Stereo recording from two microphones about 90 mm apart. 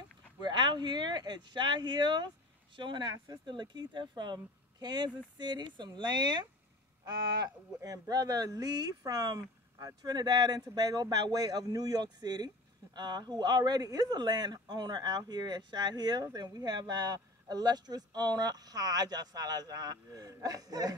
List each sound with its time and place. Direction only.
0.4 s speech: 55° right (ahead or behind)